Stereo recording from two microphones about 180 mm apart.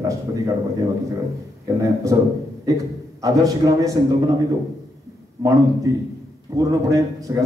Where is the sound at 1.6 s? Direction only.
20° right (ahead or behind).